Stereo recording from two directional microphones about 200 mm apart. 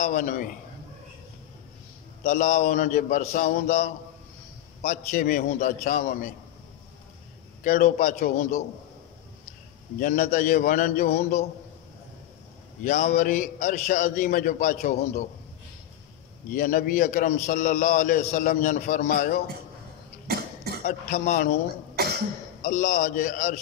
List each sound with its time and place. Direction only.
0.0 s a man's voice: 35° left (ahead or behind)
2.2 s a man's voice: 35° left (ahead or behind)
7.6 s a man's voice: 40° left (ahead or behind)
9.9 s a man's voice: 40° left (ahead or behind)
12.8 s a man's voice: 35° left (ahead or behind)
16.5 s a man's voice: 40° left (ahead or behind)
20.2 s cough: 50° right (ahead or behind)
20.8 s a man's voice: 35° left (ahead or behind)
21.9 s cough: 50° right (ahead or behind)
22.6 s a man's voice: 40° left (ahead or behind)